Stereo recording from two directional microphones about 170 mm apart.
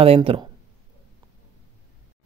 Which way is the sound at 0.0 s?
35° right (ahead or behind).